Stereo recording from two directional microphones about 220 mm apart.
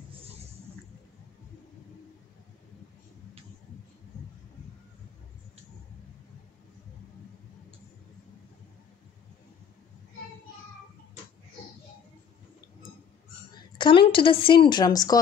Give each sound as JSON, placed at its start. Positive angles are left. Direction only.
{"t": 13.7, "sound": "a woman's voice", "side_deg": 20}